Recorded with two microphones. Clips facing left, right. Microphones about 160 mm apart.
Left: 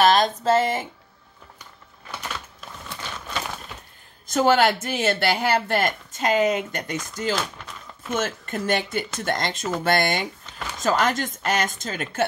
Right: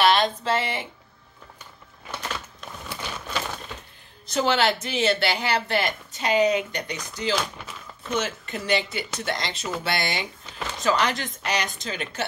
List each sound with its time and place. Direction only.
0.0 s speech: 45° left (ahead or behind)
2.6 s crumpling: centre (ahead or behind)
4.3 s speech: 45° left (ahead or behind)
7.3 s speech: 5° right (ahead or behind)
8.1 s speech: 50° left (ahead or behind)